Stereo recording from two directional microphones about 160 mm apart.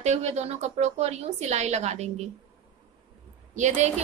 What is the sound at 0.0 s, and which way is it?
A woman's voice, 40° right (ahead or behind).